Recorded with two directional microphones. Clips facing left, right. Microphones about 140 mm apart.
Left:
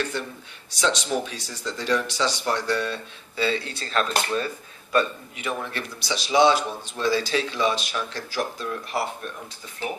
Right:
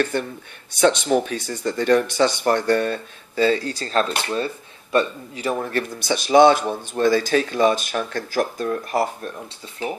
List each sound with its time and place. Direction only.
0.1 s speech: 55° right (ahead or behind)